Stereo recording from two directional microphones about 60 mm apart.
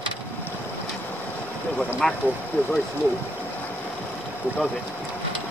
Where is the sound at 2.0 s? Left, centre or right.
Centre.